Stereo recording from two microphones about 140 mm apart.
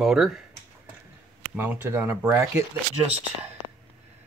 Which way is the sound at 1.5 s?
10° right (ahead or behind).